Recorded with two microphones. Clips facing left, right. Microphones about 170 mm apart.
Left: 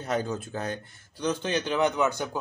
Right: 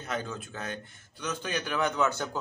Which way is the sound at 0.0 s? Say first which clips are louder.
Left 6 dB; 35° left (ahead or behind).